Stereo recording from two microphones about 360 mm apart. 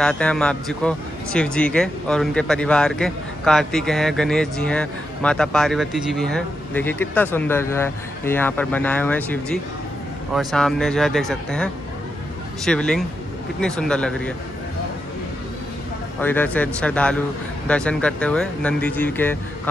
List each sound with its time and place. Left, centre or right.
0.0 s a man's voice: centre
16.2 s a man's voice: centre